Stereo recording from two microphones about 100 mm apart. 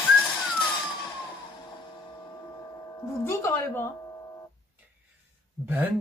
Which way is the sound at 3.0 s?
30° left (ahead or behind).